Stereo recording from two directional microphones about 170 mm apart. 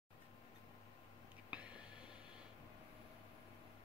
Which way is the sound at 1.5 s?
5° right (ahead or behind).